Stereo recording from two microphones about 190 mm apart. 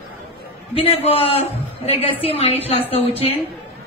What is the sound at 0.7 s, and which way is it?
A woman's voice, 30° left (ahead or behind).